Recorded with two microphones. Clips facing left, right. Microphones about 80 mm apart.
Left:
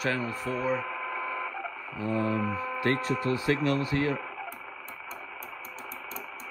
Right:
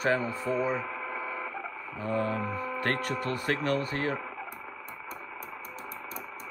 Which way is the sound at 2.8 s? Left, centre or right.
Right.